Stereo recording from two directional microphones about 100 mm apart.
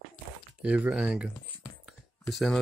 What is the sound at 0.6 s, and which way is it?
Speech, 15° right (ahead or behind).